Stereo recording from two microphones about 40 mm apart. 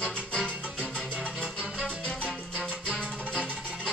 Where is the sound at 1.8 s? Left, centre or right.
Left.